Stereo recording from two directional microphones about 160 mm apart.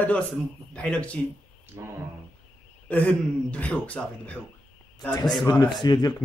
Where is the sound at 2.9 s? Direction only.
10° left (ahead or behind).